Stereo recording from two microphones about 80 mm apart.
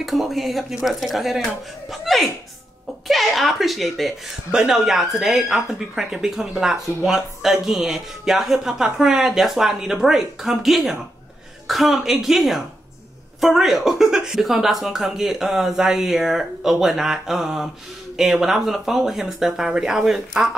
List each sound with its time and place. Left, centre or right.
0.0 s speech: centre